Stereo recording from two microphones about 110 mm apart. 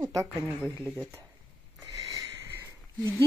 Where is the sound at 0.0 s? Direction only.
25° right (ahead or behind).